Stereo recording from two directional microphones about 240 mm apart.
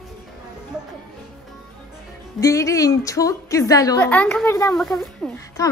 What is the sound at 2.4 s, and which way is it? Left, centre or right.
A woman's voice, centre.